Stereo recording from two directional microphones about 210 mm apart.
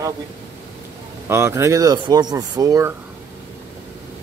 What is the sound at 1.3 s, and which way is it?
Speech, 15° right (ahead or behind).